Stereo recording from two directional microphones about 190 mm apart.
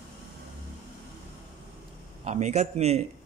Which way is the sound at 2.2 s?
35° right (ahead or behind).